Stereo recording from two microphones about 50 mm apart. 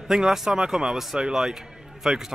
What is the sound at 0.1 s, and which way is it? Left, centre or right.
Speech, centre.